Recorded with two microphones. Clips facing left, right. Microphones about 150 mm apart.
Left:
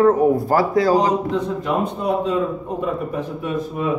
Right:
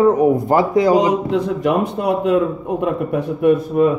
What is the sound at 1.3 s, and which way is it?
A man's voice, 80° right.